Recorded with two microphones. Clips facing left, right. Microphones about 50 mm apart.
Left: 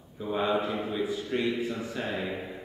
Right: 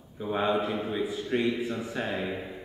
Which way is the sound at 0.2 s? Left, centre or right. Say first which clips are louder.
Right 1 dB; centre.